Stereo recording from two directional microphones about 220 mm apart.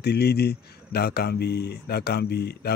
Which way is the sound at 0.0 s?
50° left (ahead or behind).